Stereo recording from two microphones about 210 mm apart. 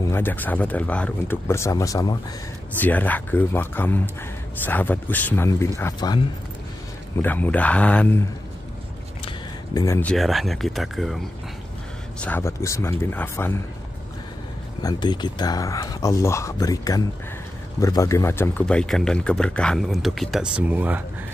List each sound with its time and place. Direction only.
0.1 s speech: 10° left (ahead or behind)
7.2 s speech: 10° left (ahead or behind)
9.8 s speech: 10° left (ahead or behind)
10.1 s speech: centre (ahead or behind)
12.2 s speech: 10° left (ahead or behind)
14.8 s speech: 20° left (ahead or behind); by 21.0 s 5° right (ahead or behind)